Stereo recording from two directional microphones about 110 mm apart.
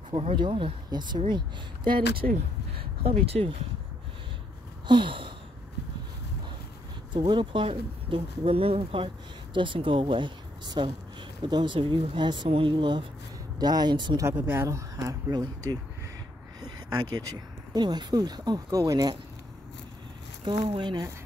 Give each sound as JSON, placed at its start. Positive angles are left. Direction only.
{"t": 0.1, "sound": "speech", "side_deg": -55}
{"t": 0.8, "sound": "speech", "side_deg": -40}
{"t": 3.3, "sound": "speech", "side_deg": -65}
{"t": 4.8, "sound": "a sound", "side_deg": -45}
{"t": 7.1, "sound": "speech", "side_deg": -45}
{"t": 14.2, "sound": "speech", "side_deg": -20}
{"t": 16.6, "sound": "a sound", "side_deg": -35}
{"t": 17.7, "sound": "speech", "side_deg": -40}
{"t": 20.4, "sound": "speech", "side_deg": -45}